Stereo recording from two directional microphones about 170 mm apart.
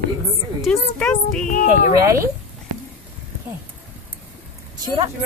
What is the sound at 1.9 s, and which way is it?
Speech, 15° right (ahead or behind).